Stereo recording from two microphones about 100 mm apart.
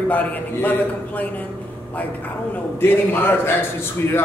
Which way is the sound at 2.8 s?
20° left (ahead or behind).